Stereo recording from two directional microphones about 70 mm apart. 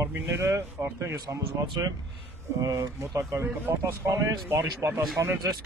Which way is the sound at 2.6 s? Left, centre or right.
Right.